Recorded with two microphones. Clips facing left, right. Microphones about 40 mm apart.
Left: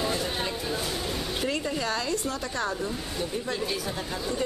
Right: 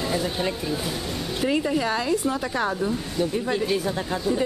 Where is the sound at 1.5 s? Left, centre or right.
Centre.